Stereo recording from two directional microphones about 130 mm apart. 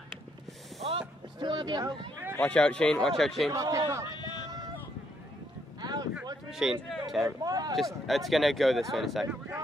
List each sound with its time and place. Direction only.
1.4 s speech: 35° right (ahead or behind)
2.3 s speech: 10° left (ahead or behind)
3.5 s a man's voice: 30° right (ahead or behind)
4.1 s a sound: 35° left (ahead or behind)
5.8 s boat: 30° right (ahead or behind)
6.5 s speech: 5° right (ahead or behind)
7.4 s a man's voice: 30° right (ahead or behind)
7.7 s speech: centre (ahead or behind)